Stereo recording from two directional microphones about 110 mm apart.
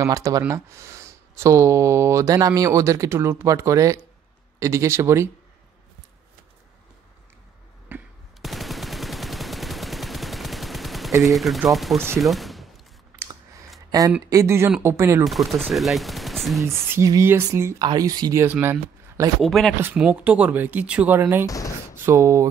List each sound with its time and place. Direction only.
0.0 s speech: 30° right (ahead or behind)
7.9 s fireworks: 20° right (ahead or behind)
8.4 s machine gun: centre (ahead or behind)
11.2 s speech: centre (ahead or behind)
12.2 s fusillade: centre (ahead or behind)
14.2 s speech: 30° right (ahead or behind)
15.2 s speech: centre (ahead or behind)
16.6 s speech: 25° right (ahead or behind)
18.4 s speech: 20° right (ahead or behind)
19.4 s speech: centre (ahead or behind)
19.8 s speech: 15° right (ahead or behind)
21.5 s speech: 30° left (ahead or behind)
21.9 s speech: 20° right (ahead or behind)